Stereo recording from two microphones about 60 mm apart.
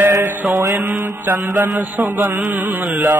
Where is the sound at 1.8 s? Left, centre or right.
Right.